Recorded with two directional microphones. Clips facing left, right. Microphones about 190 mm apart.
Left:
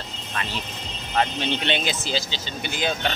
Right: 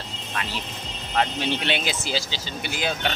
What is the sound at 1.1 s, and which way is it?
Speech, 5° right (ahead or behind).